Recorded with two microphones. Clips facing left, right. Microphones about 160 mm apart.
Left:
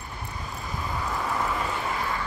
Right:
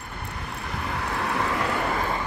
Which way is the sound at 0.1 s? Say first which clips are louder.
Right 2 dB; 65° right (ahead or behind).